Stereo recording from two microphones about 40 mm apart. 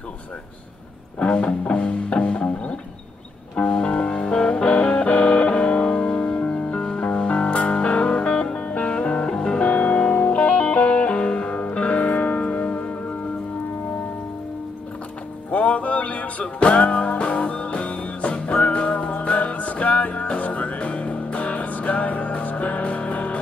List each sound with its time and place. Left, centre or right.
1.2 s music: left
3.5 s music: left
8.6 s music: left
15.5 s music: left